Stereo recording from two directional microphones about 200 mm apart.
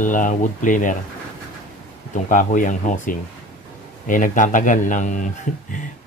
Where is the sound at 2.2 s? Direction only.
40° left (ahead or behind).